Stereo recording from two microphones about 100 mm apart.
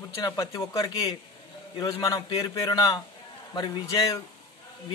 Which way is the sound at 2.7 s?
45° left (ahead or behind).